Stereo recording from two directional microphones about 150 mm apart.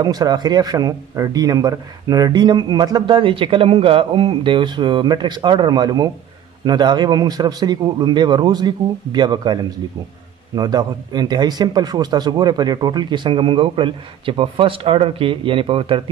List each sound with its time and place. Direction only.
0.0 s a man's voice: 25° right (ahead or behind)